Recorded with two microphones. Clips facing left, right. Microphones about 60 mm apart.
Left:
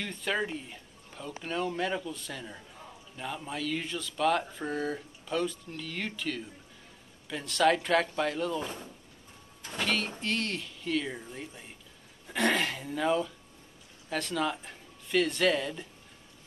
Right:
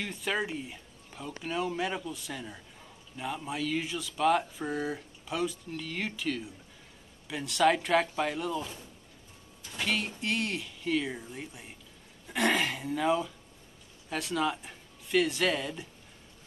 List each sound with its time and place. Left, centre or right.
0.0 s speech: centre
8.5 s speech: left
9.8 s speech: centre